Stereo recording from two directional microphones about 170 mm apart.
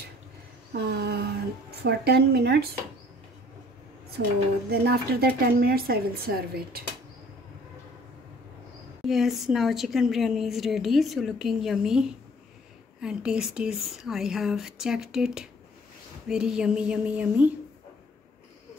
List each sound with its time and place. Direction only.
0.7 s speech: 75° right (ahead or behind)
4.2 s a woman's voice: 70° right (ahead or behind)
9.0 s a woman's voice: centre (ahead or behind)